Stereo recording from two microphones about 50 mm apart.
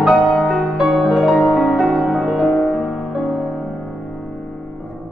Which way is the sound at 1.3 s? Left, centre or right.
Centre.